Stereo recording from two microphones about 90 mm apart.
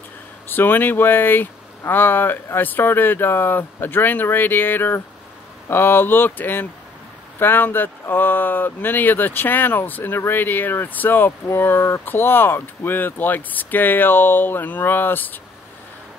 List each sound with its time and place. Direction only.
0.5 s speech: 20° left (ahead or behind)